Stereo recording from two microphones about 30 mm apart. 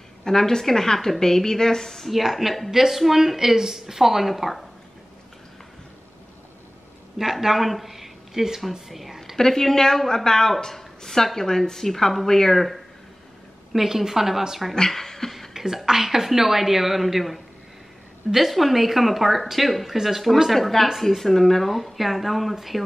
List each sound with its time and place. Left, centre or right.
0.2 s a woman's voice: centre
2.0 s speech: centre
2.7 s a woman's voice: centre
7.2 s speech: centre
9.4 s a woman's voice: centre
13.7 s a woman's voice: centre
14.9 s speech: centre
15.5 s a woman's voice: centre
20.5 s a woman's voice: centre
21.6 s speech: centre